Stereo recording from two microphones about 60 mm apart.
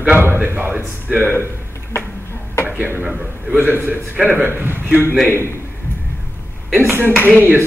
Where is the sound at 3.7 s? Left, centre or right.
Right.